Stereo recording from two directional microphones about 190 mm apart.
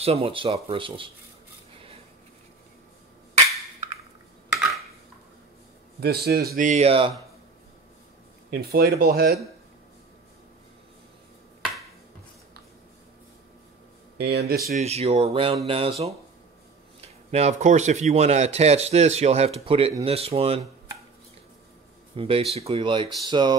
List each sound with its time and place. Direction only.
0.0 s speech: 30° right (ahead or behind)
5.9 s speech: 55° right (ahead or behind); by 7.2 s 30° right (ahead or behind)
8.5 s speech: 55° right (ahead or behind)
14.1 s speech: 60° right (ahead or behind)
14.8 s speech: 35° right (ahead or behind)
17.3 s speech: 35° right (ahead or behind)
22.1 s speech: 30° right (ahead or behind)